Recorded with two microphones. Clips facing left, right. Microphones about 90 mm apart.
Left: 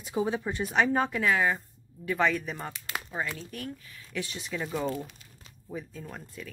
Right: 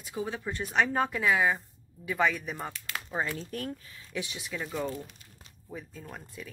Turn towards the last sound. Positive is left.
turn(degrees=0)  # may be behind; listen again after turning